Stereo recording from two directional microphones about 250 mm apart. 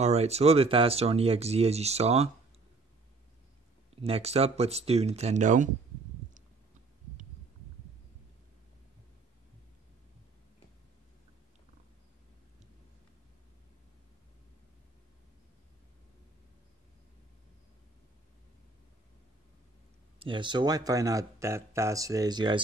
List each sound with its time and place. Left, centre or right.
0.0 s speech: right
3.9 s speech: right
20.2 s speech: centre